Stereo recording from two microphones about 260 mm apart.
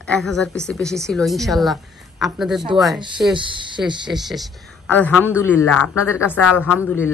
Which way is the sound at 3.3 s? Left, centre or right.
Centre.